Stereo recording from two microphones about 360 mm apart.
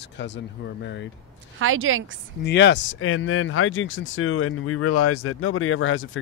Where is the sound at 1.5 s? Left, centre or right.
Right.